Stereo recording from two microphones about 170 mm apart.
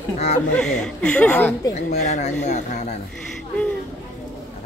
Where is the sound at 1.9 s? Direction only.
45° left (ahead or behind).